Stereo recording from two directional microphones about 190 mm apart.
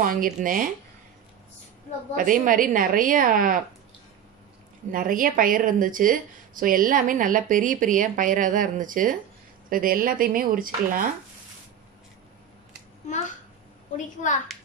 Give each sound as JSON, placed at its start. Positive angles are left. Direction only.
{"t": 0.0, "sound": "a woman's voice", "side_deg": -45}
{"t": 2.1, "sound": "a woman's voice", "side_deg": -45}
{"t": 4.9, "sound": "a woman's voice", "side_deg": -45}